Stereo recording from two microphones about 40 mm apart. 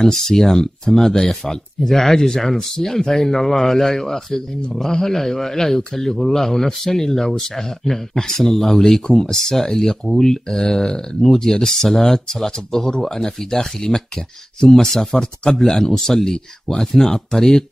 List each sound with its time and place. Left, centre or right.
0.0 s a man's voice: centre
14.9 s a man's voice: centre
16.3 s speech: left
16.8 s a man's voice: centre